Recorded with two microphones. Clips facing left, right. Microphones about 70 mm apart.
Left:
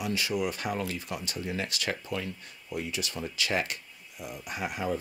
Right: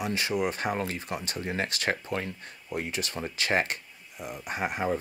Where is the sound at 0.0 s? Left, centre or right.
Right.